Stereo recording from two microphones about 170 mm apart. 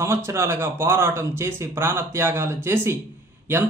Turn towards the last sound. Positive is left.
turn(degrees=-15)  # may be behind; listen again after turning